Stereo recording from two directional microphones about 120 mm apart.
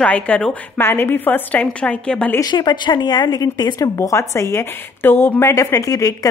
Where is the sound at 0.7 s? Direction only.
20° left (ahead or behind).